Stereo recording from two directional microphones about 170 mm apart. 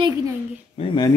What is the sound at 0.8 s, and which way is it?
Speech, 35° left (ahead or behind).